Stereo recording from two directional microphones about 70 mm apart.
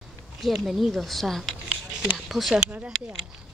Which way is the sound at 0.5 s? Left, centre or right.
Centre.